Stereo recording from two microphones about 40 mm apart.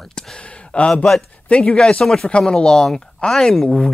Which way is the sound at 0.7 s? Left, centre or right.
Left.